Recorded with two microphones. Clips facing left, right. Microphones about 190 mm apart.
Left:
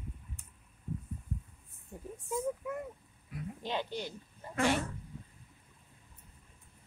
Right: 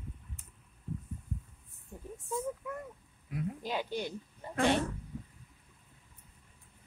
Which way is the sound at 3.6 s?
10° right (ahead or behind).